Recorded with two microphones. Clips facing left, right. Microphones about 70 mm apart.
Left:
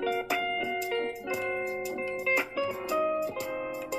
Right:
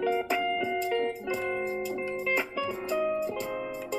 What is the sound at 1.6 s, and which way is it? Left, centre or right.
Music, right.